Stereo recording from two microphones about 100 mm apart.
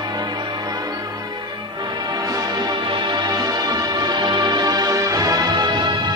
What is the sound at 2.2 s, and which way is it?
Music, 40° right (ahead or behind).